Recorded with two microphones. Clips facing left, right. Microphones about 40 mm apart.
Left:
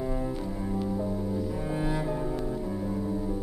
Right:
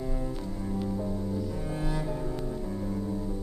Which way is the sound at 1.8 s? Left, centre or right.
Centre.